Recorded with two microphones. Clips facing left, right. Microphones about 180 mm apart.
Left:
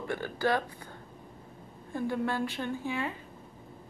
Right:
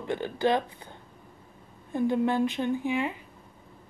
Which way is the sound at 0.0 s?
20° right (ahead or behind).